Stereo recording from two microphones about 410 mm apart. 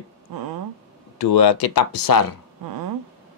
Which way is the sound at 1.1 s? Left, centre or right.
Left.